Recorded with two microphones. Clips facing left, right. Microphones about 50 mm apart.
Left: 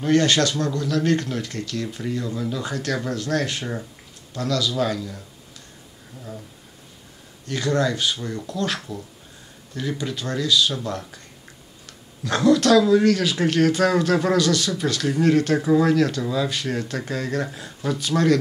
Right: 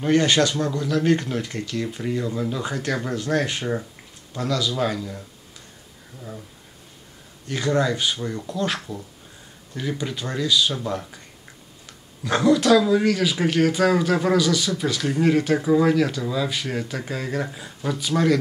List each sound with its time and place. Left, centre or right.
0.0 s speech: centre
7.4 s speech: centre
12.2 s speech: centre